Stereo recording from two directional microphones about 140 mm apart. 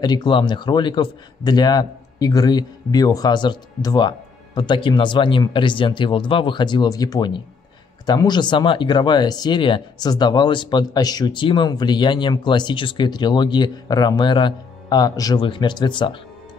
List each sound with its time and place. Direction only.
0.0 s speech: 30° left (ahead or behind)